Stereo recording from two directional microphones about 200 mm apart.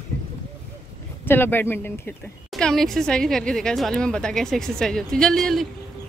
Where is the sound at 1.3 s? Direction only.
10° left (ahead or behind).